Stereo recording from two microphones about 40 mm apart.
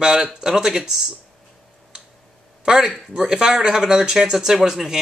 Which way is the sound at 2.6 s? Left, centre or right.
Centre.